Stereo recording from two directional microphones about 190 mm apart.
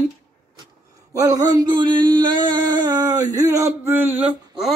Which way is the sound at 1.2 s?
20° right (ahead or behind).